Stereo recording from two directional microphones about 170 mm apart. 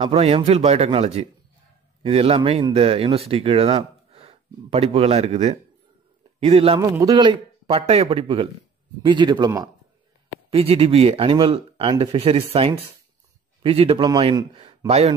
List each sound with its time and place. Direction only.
0.0 s speech: 35° right (ahead or behind)
6.8 s a man's voice: 20° right (ahead or behind)
10.5 s speech: 35° right (ahead or behind)
14.5 s a sound: 35° right (ahead or behind)
14.9 s speech: 40° right (ahead or behind)